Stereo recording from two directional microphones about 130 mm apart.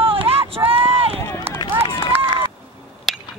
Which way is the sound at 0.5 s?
45° right (ahead or behind).